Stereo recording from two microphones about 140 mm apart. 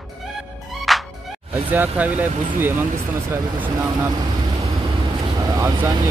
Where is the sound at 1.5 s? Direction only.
10° right (ahead or behind).